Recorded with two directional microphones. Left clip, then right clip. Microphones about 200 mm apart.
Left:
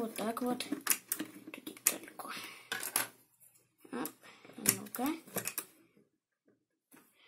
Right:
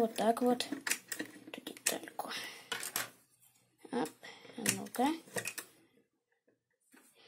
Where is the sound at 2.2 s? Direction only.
35° right (ahead or behind).